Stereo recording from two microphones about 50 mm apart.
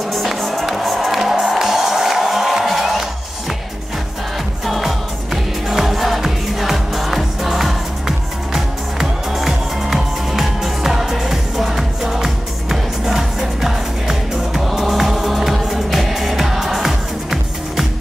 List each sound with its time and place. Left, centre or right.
0.1 s music: centre
4.6 s music: centre
9.3 s music: centre